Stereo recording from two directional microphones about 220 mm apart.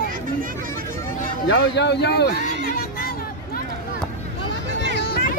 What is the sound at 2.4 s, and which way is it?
Music, 40° left (ahead or behind).